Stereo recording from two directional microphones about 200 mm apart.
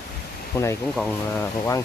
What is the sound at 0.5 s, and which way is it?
Speech, 15° left (ahead or behind).